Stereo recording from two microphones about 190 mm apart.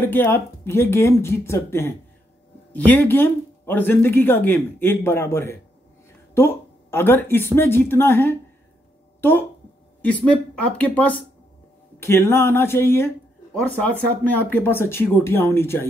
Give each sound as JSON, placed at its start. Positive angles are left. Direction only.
{"t": 0.0, "sound": "speech", "side_deg": 10}
{"t": 10.0, "sound": "speech", "side_deg": 5}